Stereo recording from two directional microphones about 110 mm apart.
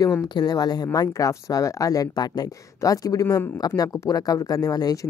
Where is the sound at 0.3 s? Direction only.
40° left (ahead or behind).